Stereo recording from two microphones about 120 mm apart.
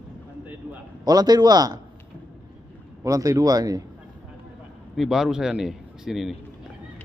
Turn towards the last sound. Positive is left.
turn(degrees=-5)  # may be behind; listen again after turning